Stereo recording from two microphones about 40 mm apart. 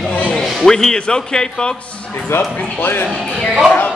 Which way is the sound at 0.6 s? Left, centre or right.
Centre.